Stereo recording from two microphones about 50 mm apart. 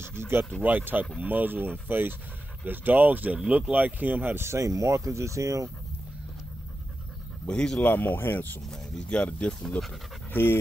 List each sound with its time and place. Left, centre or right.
0.0 s speech: right
0.6 s speech: right
4.4 s speech: right
7.4 s speech: centre
7.8 s speech: left
9.1 s speech: left
10.3 s speech: left